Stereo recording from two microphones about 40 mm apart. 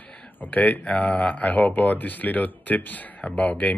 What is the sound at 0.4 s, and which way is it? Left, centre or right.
Speech, left.